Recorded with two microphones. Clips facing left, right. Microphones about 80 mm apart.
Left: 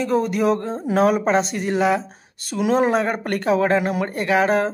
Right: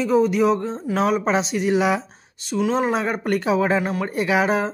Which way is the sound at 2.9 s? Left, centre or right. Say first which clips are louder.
Left 1 dB; centre.